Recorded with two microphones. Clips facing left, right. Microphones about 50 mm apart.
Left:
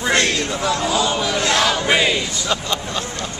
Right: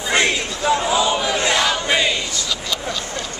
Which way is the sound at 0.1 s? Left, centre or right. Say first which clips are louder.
Right 1 dB; centre.